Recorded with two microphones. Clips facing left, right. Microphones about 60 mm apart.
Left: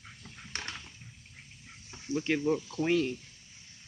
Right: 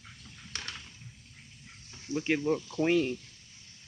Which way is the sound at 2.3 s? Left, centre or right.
Centre.